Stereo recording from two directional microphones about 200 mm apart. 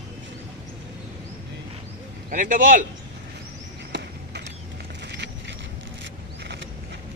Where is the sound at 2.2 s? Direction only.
40° right (ahead or behind).